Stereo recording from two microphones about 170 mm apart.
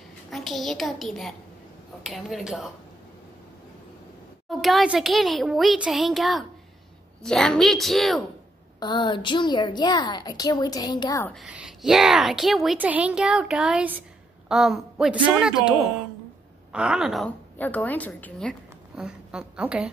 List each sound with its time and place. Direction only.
0.3 s a woman's voice: centre (ahead or behind)
4.5 s a woman's voice: centre (ahead or behind)
8.7 s a woman's voice: 25° left (ahead or behind)
11.2 s a woman's voice: centre (ahead or behind)
17.6 s a woman's voice: 10° left (ahead or behind); by 19.9 s 5° right (ahead or behind)